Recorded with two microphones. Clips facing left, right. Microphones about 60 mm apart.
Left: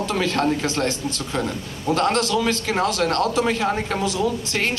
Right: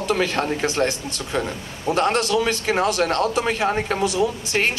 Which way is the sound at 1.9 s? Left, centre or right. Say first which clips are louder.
Even; centre.